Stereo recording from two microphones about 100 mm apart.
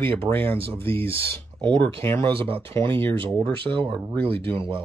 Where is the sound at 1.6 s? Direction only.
50° right (ahead or behind).